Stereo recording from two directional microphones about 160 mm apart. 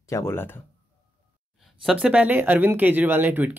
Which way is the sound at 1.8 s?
Centre (ahead or behind).